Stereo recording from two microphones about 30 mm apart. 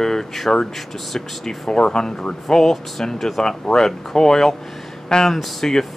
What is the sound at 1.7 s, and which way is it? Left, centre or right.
Speech, left.